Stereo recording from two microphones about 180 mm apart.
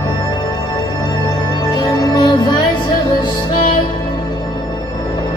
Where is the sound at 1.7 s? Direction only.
25° left (ahead or behind).